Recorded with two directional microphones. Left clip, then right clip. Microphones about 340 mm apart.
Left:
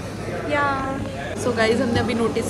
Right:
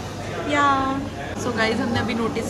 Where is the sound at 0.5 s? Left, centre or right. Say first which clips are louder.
Right 3 dB; centre.